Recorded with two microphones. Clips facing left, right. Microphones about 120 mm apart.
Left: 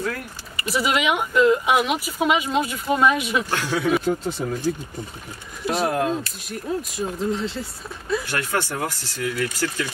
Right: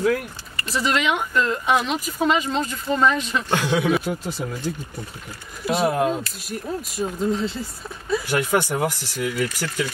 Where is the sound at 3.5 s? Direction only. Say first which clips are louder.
Right 3 dB; 20° right (ahead or behind).